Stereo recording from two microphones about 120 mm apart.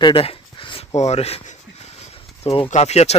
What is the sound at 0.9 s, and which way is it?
Speech, 65° left (ahead or behind).